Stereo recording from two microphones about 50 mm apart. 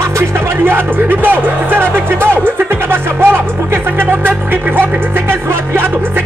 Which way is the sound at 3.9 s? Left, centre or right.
Right.